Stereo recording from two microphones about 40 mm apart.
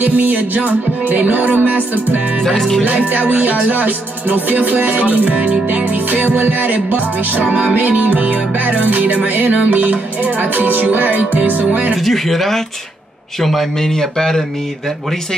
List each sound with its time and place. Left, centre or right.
0.0 s music: right
2.4 s speech: centre
2.8 s music: right
7.4 s music: right
8.0 s music: right
12.0 s speech: centre